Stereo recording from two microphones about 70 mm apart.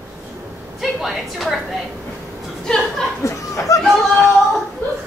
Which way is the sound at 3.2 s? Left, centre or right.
Left.